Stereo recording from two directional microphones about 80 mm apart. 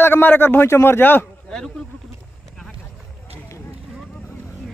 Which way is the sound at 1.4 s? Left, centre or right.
Centre.